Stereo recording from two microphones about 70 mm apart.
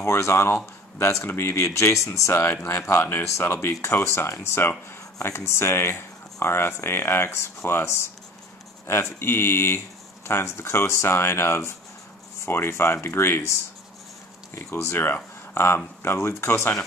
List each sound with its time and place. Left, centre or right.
0.0 s speech: left
2.4 s speech: left
3.3 s speech: left